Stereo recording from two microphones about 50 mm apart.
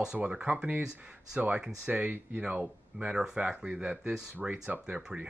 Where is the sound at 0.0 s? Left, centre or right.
Centre.